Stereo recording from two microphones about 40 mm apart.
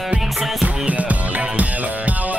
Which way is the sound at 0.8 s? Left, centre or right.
Right.